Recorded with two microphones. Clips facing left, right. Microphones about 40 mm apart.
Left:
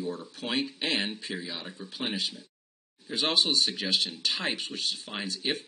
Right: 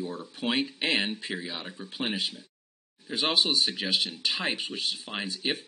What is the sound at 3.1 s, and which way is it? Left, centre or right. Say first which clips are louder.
Speech: right 1 dB; centre.